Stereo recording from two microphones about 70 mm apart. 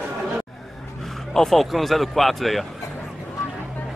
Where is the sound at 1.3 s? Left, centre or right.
Centre.